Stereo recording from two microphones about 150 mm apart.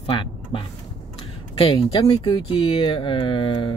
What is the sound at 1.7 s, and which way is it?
Speech, 35° left (ahead or behind).